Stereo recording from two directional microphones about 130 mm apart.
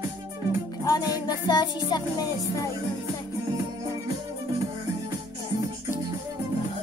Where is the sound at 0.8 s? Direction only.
30° left (ahead or behind).